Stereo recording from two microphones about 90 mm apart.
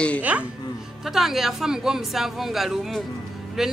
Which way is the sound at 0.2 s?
15° right (ahead or behind).